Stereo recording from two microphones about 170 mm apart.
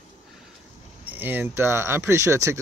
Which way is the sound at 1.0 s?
10° right (ahead or behind).